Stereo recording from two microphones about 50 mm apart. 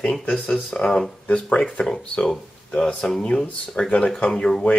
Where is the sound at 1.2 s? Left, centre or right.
Left.